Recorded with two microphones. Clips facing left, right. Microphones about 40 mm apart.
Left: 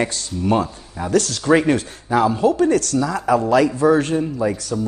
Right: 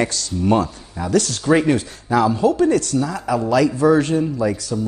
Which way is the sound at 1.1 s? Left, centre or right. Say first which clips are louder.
Left 1 dB; left.